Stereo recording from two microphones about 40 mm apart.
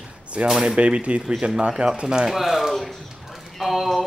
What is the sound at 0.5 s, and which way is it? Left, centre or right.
Speech, centre.